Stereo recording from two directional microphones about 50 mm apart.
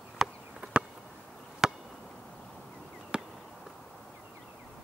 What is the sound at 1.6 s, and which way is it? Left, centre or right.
Chop, centre.